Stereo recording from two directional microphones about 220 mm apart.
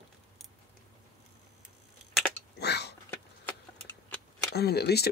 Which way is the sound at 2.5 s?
50° left (ahead or behind).